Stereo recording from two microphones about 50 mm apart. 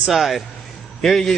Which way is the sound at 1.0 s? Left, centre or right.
Centre.